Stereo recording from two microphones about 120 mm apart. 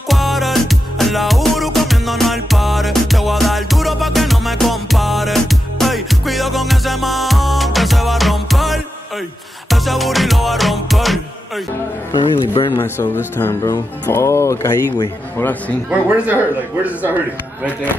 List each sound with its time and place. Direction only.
0.1 s music: centre (ahead or behind)
12.1 s speech: 40° left (ahead or behind)
12.7 s speech: 20° left (ahead or behind)
15.9 s speech: 15° right (ahead or behind)